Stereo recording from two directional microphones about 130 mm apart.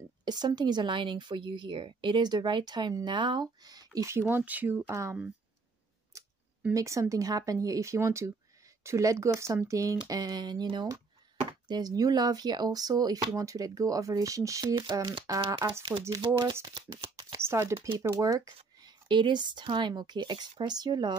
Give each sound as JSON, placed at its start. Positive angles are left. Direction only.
{"t": 0.2, "sound": "speech", "side_deg": -35}
{"t": 6.1, "sound": "scissors", "side_deg": -25}
{"t": 6.7, "sound": "speech", "side_deg": -25}